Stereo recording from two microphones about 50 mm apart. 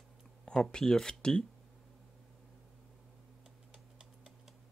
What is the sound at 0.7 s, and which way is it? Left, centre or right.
Speech, centre.